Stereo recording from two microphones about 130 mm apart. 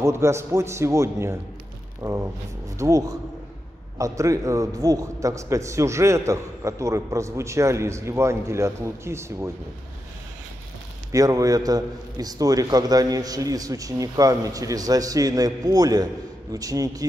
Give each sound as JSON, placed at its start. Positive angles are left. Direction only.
{"t": 0.0, "sound": "a man's voice", "side_deg": -20}
{"t": 11.1, "sound": "a man's voice", "side_deg": -25}